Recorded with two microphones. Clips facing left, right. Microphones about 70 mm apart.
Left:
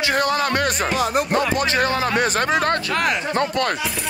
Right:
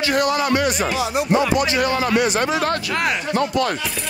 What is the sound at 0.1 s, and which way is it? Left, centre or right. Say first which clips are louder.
Speech: right 2 dB; left.